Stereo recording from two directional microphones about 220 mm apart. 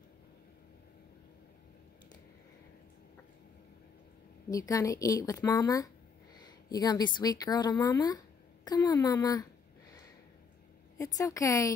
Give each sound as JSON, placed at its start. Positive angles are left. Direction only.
{"t": 4.5, "sound": "a woman's voice", "side_deg": 15}
{"t": 11.0, "sound": "a woman's voice", "side_deg": 15}